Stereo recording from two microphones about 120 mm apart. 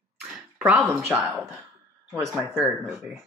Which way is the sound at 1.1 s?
10° right (ahead or behind).